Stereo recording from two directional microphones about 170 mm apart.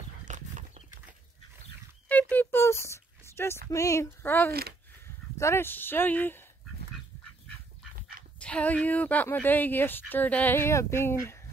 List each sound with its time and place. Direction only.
0.2 s horse: 45° right (ahead or behind)
2.0 s a sound: 10° left (ahead or behind)
4.5 s speech: 65° right (ahead or behind)
5.0 s speech: 15° left (ahead or behind)
8.4 s speech: 5° left (ahead or behind)